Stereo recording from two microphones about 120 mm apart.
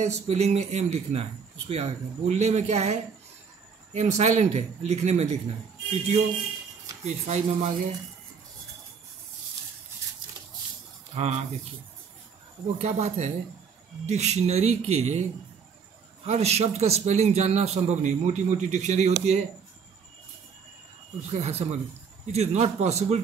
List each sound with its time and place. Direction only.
0.0 s speech: 65° right (ahead or behind)
7.1 s speech: 70° right (ahead or behind)
11.1 s speech: 70° right (ahead or behind)
12.8 s speech: 75° right (ahead or behind)
16.3 s speech: 65° right (ahead or behind)
21.3 s speech: 65° right (ahead or behind)